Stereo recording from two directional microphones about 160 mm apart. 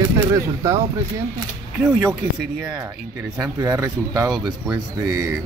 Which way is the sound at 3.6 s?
15° right (ahead or behind).